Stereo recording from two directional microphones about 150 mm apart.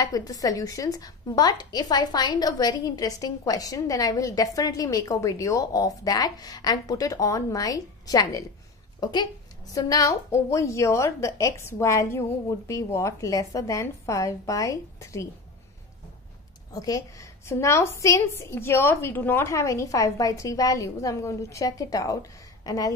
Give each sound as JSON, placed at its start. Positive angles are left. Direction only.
{"t": 0.0, "sound": "a woman's voice", "side_deg": 25}
{"t": 16.7, "sound": "a woman's voice", "side_deg": 25}